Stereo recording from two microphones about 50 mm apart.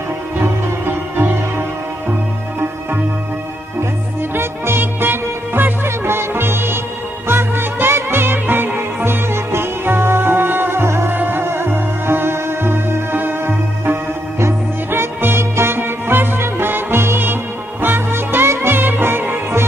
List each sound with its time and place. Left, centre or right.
0.4 s music: right
4.2 s music: right
11.1 s music: right